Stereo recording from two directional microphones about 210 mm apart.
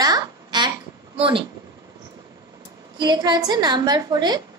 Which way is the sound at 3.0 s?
20° right (ahead or behind).